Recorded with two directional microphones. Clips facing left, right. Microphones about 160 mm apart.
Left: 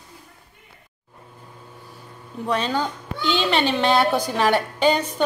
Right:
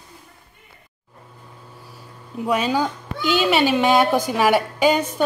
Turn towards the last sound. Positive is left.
turn(degrees=-10)  # may be behind; listen again after turning